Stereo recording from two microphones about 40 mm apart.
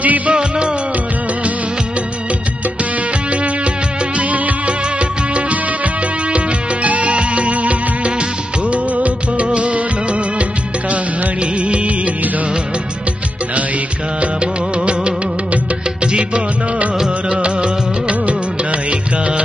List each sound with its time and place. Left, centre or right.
0.3 s music: right
4.2 s music: right
6.3 s music: right
8.6 s music of bollywood: right
11.6 s music: right
14.2 s music: right